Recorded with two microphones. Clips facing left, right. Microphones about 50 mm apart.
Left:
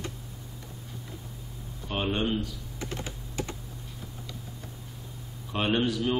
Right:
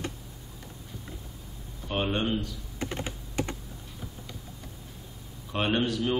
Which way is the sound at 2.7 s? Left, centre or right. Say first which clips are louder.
Right 3 dB; right.